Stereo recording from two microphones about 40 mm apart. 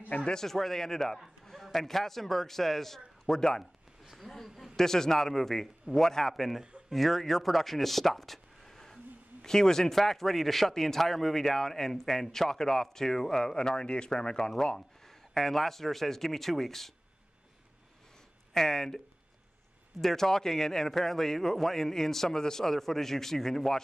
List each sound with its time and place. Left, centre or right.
0.2 s speech: centre
0.5 s a man's voice: centre
4.0 s a sound: centre
4.3 s a man's voice: centre
14.8 s speech: centre
18.5 s speech: centre
20.0 s speech: centre